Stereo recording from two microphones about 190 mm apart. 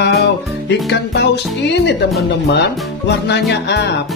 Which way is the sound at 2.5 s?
65° left (ahead or behind).